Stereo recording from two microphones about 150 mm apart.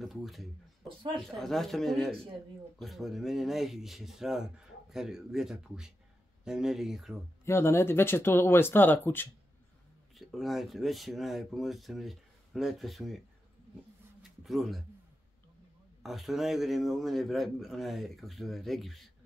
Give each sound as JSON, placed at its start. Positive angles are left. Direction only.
{"t": 0.0, "sound": "speech", "side_deg": 0}
{"t": 0.8, "sound": "speech", "side_deg": -35}
{"t": 1.2, "sound": "speech", "side_deg": 0}
{"t": 7.4, "sound": "speech", "side_deg": 15}
{"t": 10.1, "sound": "speech", "side_deg": 0}
{"t": 14.4, "sound": "speech", "side_deg": 0}
{"t": 16.0, "sound": "speech", "side_deg": 0}